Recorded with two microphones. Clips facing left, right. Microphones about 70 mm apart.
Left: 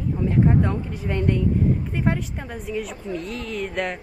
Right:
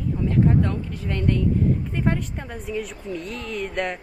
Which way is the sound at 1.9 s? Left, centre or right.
Centre.